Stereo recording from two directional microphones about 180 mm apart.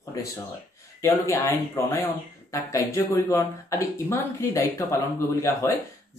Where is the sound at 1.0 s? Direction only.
15° left (ahead or behind).